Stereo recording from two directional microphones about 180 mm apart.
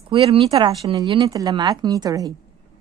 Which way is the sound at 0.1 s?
30° right (ahead or behind).